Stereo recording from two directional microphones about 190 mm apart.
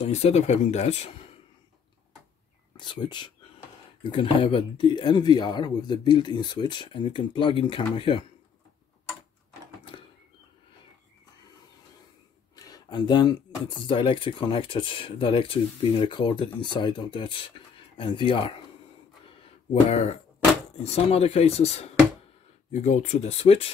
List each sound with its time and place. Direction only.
0.0 s speech: 35° left (ahead or behind)
2.8 s speech: 25° left (ahead or behind)
12.5 s a sound: 20° left (ahead or behind)
13.8 s speech: 25° left (ahead or behind)
19.2 s a sound: 30° left (ahead or behind)
20.8 s speech: 30° left (ahead or behind)